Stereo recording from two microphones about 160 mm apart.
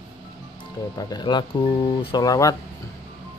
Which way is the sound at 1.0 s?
25° left (ahead or behind).